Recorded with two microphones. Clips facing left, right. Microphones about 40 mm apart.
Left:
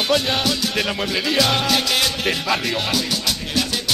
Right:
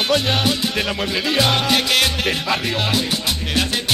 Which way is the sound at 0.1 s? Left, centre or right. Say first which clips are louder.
Right 2 dB; centre.